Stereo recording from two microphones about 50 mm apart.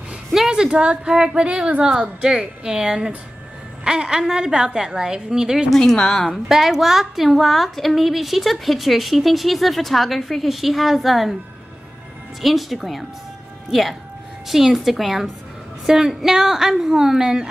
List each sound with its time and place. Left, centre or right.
0.5 s a woman's voice: centre
5.7 s a woman's voice: centre
6.5 s a woman's voice: centre
12.4 s a woman's voice: centre